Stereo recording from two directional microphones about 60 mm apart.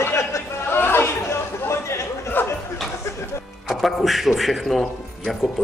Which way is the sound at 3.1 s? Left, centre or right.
Left.